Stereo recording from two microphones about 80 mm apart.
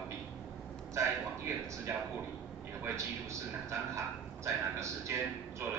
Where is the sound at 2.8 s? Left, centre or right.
Right.